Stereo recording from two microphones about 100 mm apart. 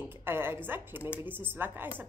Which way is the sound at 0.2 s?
25° right (ahead or behind).